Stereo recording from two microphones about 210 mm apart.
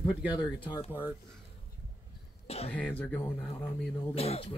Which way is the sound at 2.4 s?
30° left (ahead or behind).